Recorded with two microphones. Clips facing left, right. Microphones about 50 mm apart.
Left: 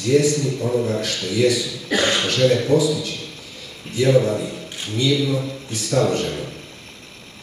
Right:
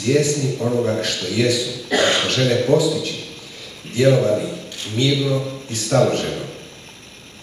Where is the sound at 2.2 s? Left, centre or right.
Right.